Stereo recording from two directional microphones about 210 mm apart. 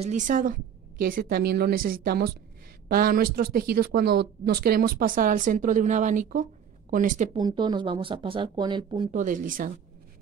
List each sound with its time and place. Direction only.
0.0 s speech: 35° right (ahead or behind)
7.3 s speech: 20° right (ahead or behind)
9.1 s speech: 40° right (ahead or behind)